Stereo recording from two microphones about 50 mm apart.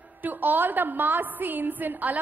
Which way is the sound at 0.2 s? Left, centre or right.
Right.